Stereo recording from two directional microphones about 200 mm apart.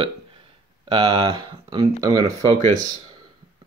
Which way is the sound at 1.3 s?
15° right (ahead or behind).